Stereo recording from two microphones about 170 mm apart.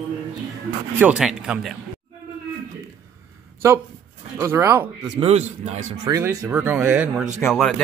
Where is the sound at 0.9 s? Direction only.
5° right (ahead or behind).